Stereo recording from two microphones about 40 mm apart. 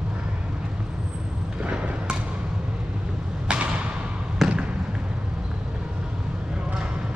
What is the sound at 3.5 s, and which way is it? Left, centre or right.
Thump, right.